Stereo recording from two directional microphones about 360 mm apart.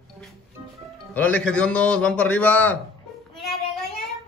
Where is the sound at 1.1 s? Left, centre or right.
Centre.